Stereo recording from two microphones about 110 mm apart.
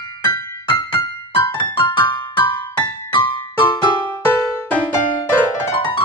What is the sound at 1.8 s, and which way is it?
Music, 45° left (ahead or behind).